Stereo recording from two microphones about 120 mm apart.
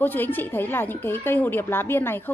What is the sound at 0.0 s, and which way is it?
A woman's voice, 15° left (ahead or behind).